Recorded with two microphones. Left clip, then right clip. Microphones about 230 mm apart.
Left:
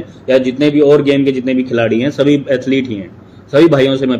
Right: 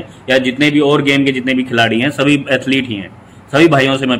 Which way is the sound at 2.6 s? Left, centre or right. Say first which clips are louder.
Even; right.